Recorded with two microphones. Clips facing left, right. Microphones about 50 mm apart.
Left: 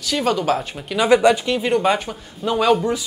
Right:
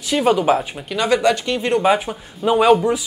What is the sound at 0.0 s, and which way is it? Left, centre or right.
Speech, centre.